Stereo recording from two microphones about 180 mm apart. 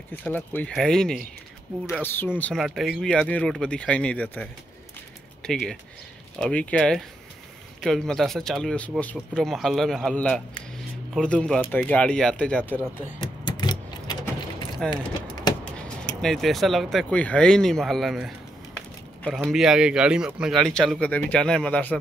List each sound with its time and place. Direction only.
0.2 s speech: 10° left (ahead or behind)
13.5 s keys jangling: 25° left (ahead or behind)
14.8 s speech: centre (ahead or behind)
16.2 s speech: centre (ahead or behind)